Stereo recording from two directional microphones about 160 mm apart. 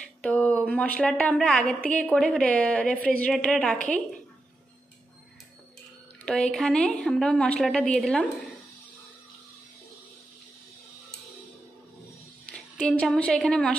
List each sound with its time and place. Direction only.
0.2 s a woman's voice: 5° left (ahead or behind)
6.2 s a woman's voice: 5° left (ahead or behind)
12.4 s a woman's voice: 5° left (ahead or behind)